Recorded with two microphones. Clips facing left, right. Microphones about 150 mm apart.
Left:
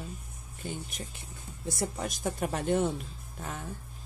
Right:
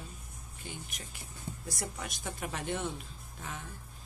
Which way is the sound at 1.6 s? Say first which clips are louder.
Left 9 dB; 30° left (ahead or behind).